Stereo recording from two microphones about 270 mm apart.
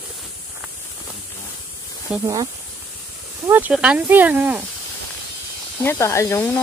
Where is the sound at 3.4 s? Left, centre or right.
Centre.